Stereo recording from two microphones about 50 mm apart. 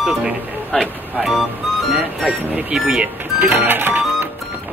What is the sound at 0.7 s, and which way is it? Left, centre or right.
Speech, centre.